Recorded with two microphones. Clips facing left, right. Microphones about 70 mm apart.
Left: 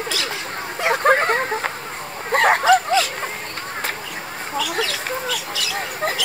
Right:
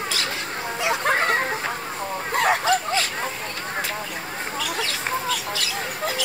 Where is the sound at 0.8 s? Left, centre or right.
Left.